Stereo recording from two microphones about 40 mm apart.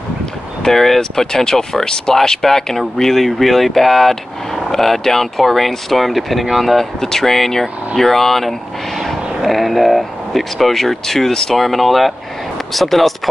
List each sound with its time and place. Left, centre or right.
0.6 s speech: centre